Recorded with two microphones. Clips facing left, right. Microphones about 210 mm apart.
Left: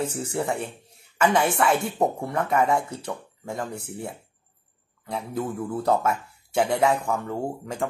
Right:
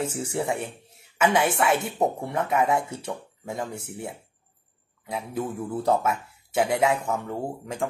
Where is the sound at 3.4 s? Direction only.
5° right (ahead or behind).